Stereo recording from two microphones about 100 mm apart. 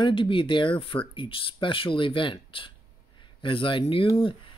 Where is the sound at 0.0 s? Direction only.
55° left (ahead or behind).